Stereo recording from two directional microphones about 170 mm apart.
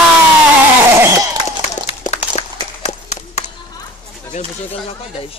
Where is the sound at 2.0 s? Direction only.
40° left (ahead or behind).